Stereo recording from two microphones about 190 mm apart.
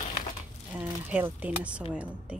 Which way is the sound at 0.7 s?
10° right (ahead or behind).